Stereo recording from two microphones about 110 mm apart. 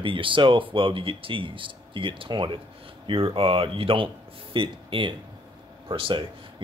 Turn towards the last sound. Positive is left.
turn(degrees=-50)  # may be behind; listen again after turning